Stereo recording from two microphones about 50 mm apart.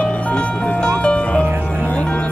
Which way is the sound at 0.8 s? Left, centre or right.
Left.